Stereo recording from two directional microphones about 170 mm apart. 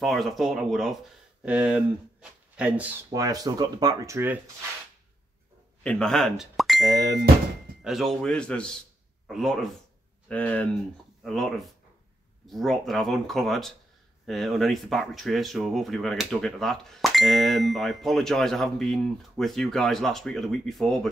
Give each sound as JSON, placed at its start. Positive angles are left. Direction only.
{"t": 0.0, "sound": "speech", "side_deg": 0}
{"t": 3.1, "sound": "speech", "side_deg": -20}
{"t": 5.9, "sound": "speech", "side_deg": 5}